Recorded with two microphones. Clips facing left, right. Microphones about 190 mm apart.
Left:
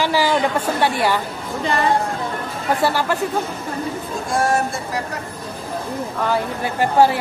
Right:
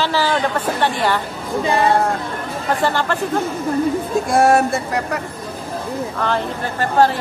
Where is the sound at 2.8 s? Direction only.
10° left (ahead or behind).